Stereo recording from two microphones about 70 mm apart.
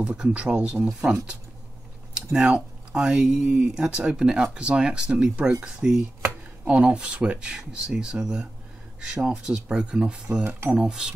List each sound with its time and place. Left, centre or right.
0.0 s speech: centre
2.1 s speech: centre